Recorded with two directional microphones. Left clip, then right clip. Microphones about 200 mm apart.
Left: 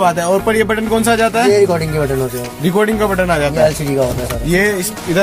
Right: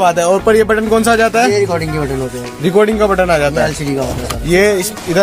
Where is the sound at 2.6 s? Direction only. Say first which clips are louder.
Right 3 dB; 5° right (ahead or behind).